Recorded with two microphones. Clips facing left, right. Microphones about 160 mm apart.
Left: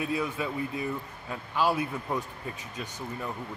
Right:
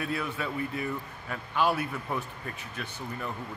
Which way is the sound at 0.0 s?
15° left (ahead or behind).